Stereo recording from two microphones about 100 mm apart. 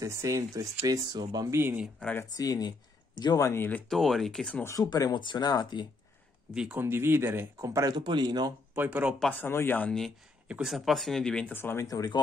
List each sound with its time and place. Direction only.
0.0 s speech: 30° right (ahead or behind)
1.5 s speech: 25° right (ahead or behind)
2.2 s speech: 40° left (ahead or behind)
3.4 s speech: 20° left (ahead or behind)
3.9 s speech: centre (ahead or behind)
4.8 s speech: 45° left (ahead or behind)
6.5 s speech: 5° right (ahead or behind)
6.8 s speech: 20° right (ahead or behind)
7.9 s speech: 45° right (ahead or behind)
8.7 s speech: 15° right (ahead or behind)
9.3 s speech: 20° left (ahead or behind)
9.8 s speech: 5° left (ahead or behind)
11.5 s speech: 25° left (ahead or behind)
11.8 s speech: 40° left (ahead or behind)